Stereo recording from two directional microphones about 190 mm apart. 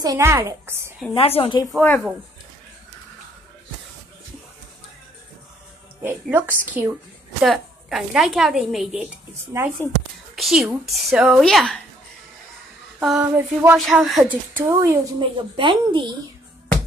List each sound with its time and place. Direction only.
0.0 s a woman's voice: 15° right (ahead or behind)
1.1 s speech: 30° left (ahead or behind)
1.7 s speech: 10° left (ahead or behind)
6.0 s a woman's voice: 10° right (ahead or behind)
7.4 s a woman's voice: centre (ahead or behind)
13.0 s a woman's voice: 5° right (ahead or behind)
15.2 s a woman's voice: 25° right (ahead or behind)